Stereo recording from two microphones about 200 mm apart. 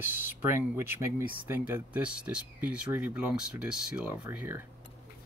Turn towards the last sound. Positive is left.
turn(degrees=-10)  # may be behind; listen again after turning